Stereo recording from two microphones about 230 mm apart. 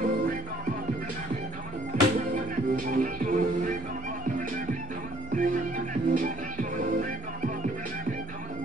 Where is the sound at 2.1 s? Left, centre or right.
Right.